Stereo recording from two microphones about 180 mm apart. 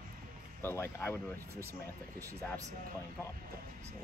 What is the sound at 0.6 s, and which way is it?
Speech, 10° left (ahead or behind).